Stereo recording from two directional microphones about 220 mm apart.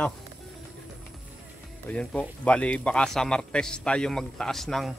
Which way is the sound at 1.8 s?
5° left (ahead or behind).